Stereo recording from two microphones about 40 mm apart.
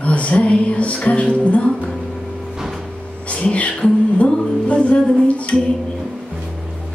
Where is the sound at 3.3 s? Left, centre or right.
Left.